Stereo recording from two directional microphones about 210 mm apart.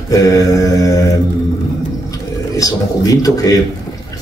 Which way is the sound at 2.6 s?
15° left (ahead or behind).